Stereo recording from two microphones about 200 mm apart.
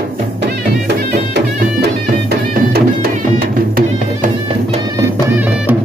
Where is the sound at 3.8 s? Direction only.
40° right (ahead or behind).